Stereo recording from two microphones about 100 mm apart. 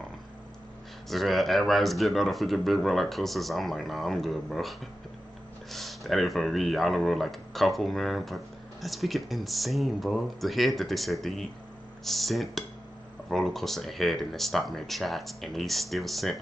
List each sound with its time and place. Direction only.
1.0 s speech: centre (ahead or behind)